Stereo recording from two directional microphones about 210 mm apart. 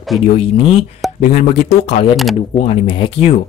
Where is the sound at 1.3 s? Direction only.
40° left (ahead or behind).